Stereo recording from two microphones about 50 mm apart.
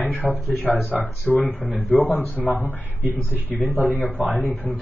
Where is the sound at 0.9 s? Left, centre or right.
Left.